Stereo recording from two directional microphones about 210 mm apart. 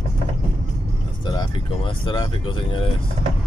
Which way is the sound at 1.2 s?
20° left (ahead or behind).